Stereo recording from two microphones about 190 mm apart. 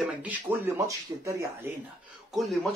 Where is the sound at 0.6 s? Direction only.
15° right (ahead or behind).